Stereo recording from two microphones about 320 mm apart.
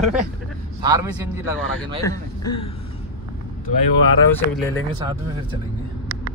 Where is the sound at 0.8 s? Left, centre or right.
Centre.